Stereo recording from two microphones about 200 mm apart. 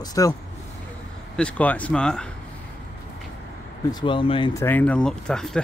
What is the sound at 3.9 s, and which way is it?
Speech, 20° left (ahead or behind).